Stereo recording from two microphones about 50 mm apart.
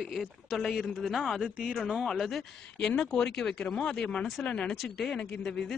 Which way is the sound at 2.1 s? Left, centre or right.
Centre.